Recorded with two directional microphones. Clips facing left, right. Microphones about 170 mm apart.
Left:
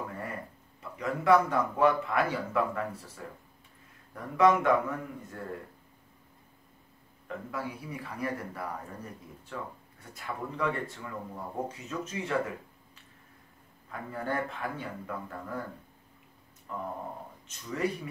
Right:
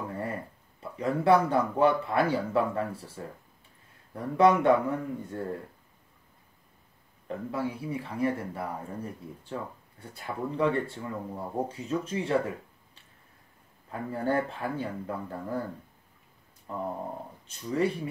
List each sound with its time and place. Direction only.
0.9 s speech: 30° right (ahead or behind)
4.1 s speech: 30° right (ahead or behind)
7.2 s speech: 30° right (ahead or behind)
16.7 s speech: 35° right (ahead or behind)